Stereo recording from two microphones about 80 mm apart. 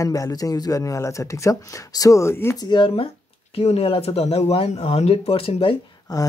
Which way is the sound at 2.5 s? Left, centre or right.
Left.